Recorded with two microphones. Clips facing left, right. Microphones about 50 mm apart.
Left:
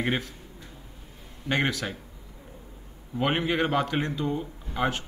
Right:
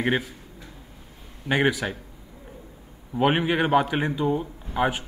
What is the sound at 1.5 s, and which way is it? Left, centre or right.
Speech, centre.